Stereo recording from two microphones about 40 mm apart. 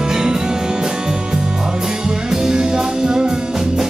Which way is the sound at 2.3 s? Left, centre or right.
Centre.